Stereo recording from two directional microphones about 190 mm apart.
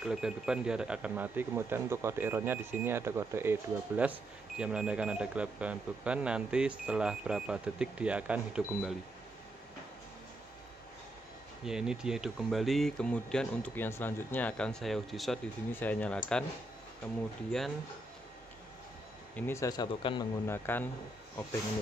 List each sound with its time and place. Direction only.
0.0 s speech: 5° right (ahead or behind)
11.6 s speech: 5° right (ahead or behind)
17.5 s speech: centre (ahead or behind)
19.3 s speech: 15° left (ahead or behind)
20.4 s speech: 10° left (ahead or behind)